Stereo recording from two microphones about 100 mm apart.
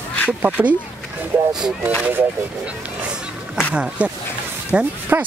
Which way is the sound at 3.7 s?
10° right (ahead or behind).